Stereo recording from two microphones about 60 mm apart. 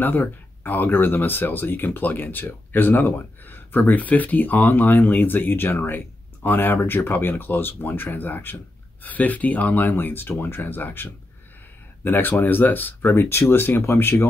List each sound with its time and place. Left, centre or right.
0.0 s speech: left